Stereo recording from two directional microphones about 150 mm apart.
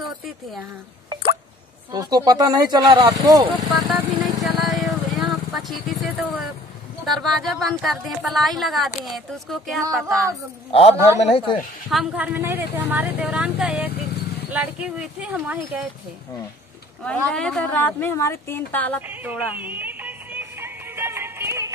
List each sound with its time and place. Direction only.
1.9 s speech: 25° right (ahead or behind)
4.4 s vehicle: centre (ahead or behind)
5.7 s speech: centre (ahead or behind)
10.7 s a man's voice: 40° left (ahead or behind)
11.9 s a woman's voice: 5° right (ahead or behind)
17.0 s a woman's voice: 5° left (ahead or behind)
19.0 s music: 10° right (ahead or behind)